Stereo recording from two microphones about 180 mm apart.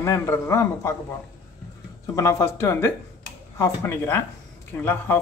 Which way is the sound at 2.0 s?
15° left (ahead or behind).